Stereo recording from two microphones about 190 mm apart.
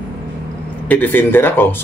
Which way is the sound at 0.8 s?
10° left (ahead or behind).